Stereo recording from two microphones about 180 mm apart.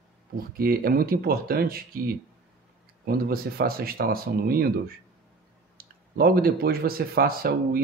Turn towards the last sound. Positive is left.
turn(degrees=-55)  # may be behind; listen again after turning